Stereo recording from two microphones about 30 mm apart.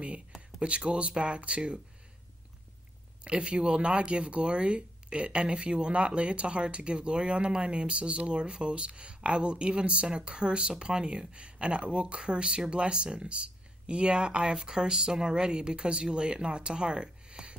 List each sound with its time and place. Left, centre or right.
0.6 s speech: right
3.3 s speech: right